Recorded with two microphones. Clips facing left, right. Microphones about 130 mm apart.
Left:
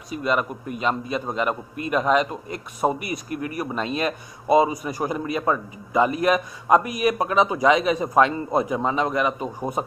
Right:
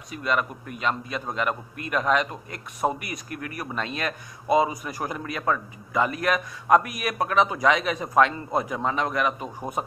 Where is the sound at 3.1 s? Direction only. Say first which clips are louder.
Left 6 dB; 25° left (ahead or behind).